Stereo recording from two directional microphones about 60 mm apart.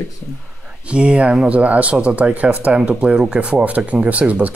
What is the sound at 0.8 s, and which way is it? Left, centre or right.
Speech, centre.